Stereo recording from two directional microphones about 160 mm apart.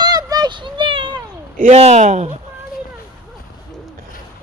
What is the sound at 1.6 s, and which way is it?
Speech, 45° right (ahead or behind).